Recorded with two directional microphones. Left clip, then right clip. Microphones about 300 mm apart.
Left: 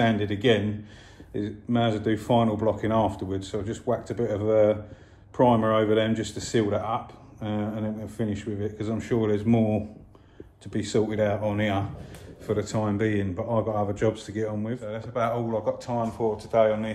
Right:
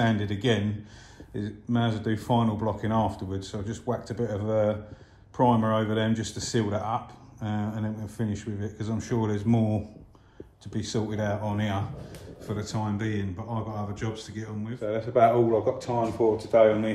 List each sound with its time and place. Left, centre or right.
0.0 s speech: centre
14.8 s speech: centre